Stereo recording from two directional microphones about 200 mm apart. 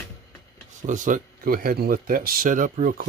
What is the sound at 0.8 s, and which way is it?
Speech, 40° right (ahead or behind).